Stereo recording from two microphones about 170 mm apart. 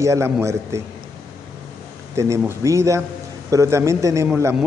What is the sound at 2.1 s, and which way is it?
A man's voice, 15° right (ahead or behind).